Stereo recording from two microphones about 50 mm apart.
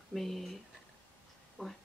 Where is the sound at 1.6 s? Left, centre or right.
Centre.